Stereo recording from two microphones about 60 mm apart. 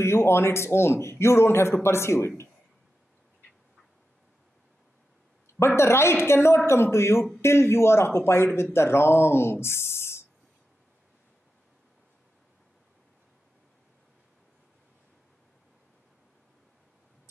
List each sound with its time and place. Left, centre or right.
0.0 s a man's voice: left
5.6 s a man's voice: left